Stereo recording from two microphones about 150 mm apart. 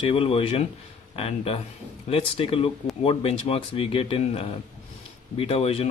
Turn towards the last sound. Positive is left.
turn(degrees=40)  # may be behind; listen again after turning